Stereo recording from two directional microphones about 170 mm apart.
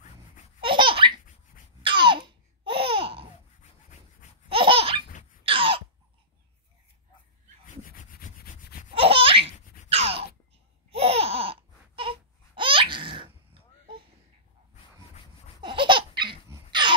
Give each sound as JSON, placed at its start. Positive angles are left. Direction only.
{"t": 0.6, "sound": "laughter", "side_deg": -30}
{"t": 4.5, "sound": "laughter", "side_deg": -30}
{"t": 5.4, "sound": "a sound", "side_deg": -30}
{"t": 7.6, "sound": "rub", "side_deg": 50}
{"t": 8.9, "sound": "laughter", "side_deg": -35}
{"t": 10.9, "sound": "babbling", "side_deg": -35}
{"t": 15.6, "sound": "laughter", "side_deg": -30}
{"t": 16.4, "sound": "a sound", "side_deg": -25}